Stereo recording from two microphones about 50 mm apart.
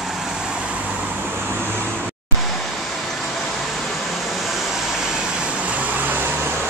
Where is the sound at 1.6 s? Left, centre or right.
Left.